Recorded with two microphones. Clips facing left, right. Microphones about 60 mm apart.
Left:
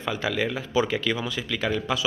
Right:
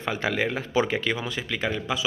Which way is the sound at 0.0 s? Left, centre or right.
Right.